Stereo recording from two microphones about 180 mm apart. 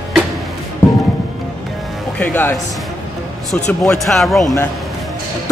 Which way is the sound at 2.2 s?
10° left (ahead or behind).